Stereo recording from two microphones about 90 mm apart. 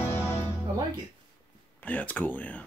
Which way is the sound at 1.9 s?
20° left (ahead or behind).